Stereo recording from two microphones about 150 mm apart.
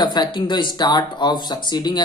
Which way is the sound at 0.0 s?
30° left (ahead or behind).